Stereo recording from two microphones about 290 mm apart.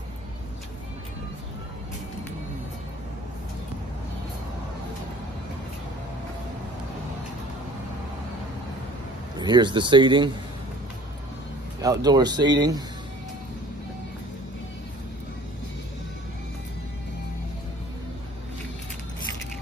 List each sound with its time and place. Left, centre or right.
9.4 s speech: centre
11.8 s speech: centre